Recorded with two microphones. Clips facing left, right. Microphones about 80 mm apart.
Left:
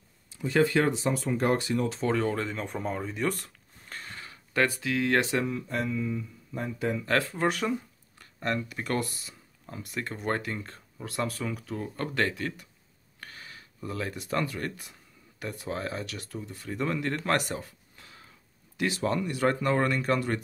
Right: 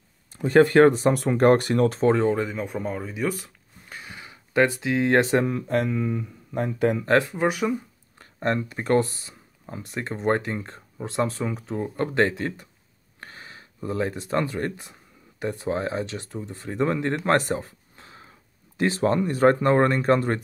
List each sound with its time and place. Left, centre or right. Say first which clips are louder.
0.3 s speech: right 7 dB; right
2.1 s speech: right 6 dB; right
2.4 s speech: right 4 dB; centre; by 5.5 s right
5.5 s speech: right 7 dB; right
7.2 s speech: right 4 dB; centre
8.2 s speech: right 6 dB; right
17.2 s a sound: right 6 dB; right
18.8 s speech: right 6 dB; right